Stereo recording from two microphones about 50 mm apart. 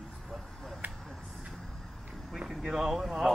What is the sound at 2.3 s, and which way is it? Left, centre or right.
Speech, centre.